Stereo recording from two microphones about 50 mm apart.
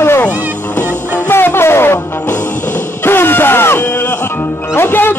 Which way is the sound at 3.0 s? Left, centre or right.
Left.